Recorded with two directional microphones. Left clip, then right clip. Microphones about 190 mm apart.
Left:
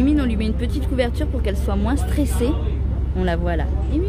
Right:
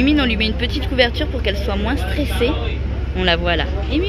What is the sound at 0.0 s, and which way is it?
Speech, 15° left (ahead or behind).